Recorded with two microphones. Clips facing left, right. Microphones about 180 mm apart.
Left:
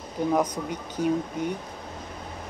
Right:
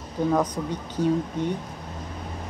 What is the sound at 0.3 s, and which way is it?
Speech, 15° left (ahead or behind).